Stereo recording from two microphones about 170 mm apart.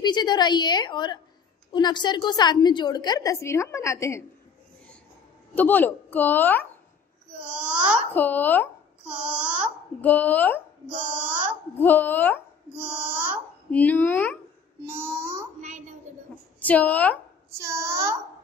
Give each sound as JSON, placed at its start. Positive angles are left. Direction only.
{"t": 0.0, "sound": "a woman's voice", "side_deg": 25}
{"t": 5.5, "sound": "a woman's voice", "side_deg": 10}
{"t": 7.4, "sound": "a child's voice", "side_deg": -5}
{"t": 8.1, "sound": "a woman's voice", "side_deg": 10}
{"t": 9.0, "sound": "babbling", "side_deg": -5}
{"t": 10.0, "sound": "a woman's voice", "side_deg": 10}
{"t": 11.1, "sound": "a sound", "side_deg": -10}
{"t": 11.8, "sound": "a woman's voice", "side_deg": 10}
{"t": 12.7, "sound": "speech", "side_deg": -10}
{"t": 13.7, "sound": "a woman's voice", "side_deg": 10}
{"t": 15.0, "sound": "a child's voice", "side_deg": -15}
{"t": 16.1, "sound": "a sound", "side_deg": -45}
{"t": 16.5, "sound": "a woman's voice", "side_deg": 10}
{"t": 17.6, "sound": "a sound", "side_deg": -15}